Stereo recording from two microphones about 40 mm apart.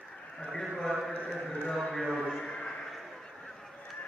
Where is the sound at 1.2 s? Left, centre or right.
Left.